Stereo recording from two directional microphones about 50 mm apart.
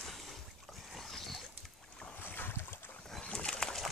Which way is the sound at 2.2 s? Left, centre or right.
Left.